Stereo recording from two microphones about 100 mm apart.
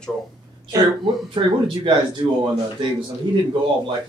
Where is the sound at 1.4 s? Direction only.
50° right (ahead or behind).